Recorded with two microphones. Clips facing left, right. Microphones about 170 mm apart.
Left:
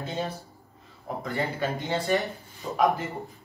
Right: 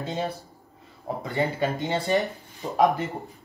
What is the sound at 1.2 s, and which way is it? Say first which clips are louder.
Speech: right 3 dB; 20° right (ahead or behind).